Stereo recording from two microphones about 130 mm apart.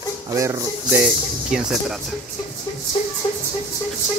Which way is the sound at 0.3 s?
25° right (ahead or behind).